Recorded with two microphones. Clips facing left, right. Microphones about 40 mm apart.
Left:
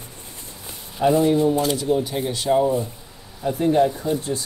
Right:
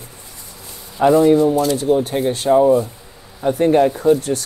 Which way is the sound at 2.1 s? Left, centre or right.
Right.